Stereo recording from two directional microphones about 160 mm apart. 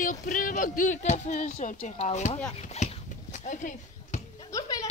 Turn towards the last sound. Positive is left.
turn(degrees=20)  # may be behind; listen again after turning